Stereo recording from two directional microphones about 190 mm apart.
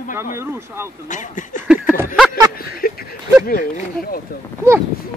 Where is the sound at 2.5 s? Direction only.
50° left (ahead or behind).